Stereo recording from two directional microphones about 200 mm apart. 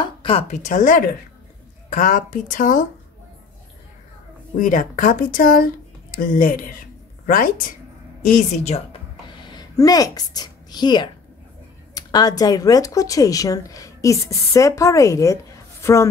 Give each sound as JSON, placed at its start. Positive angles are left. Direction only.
{"t": 0.0, "sound": "speech", "side_deg": 25}
{"t": 4.6, "sound": "speech", "side_deg": 40}
{"t": 9.4, "sound": "a woman's voice", "side_deg": 20}